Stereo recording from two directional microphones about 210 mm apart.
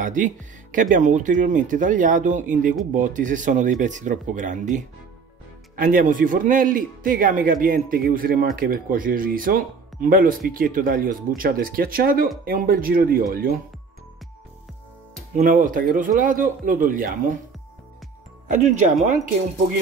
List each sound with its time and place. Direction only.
0.0 s a man's voice: 40° right (ahead or behind)
15.3 s a man's voice: 40° right (ahead or behind)
18.5 s a man's voice: 35° right (ahead or behind)